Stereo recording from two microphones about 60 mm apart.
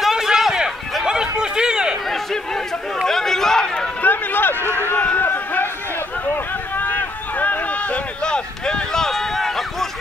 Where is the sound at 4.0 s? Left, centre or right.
Left.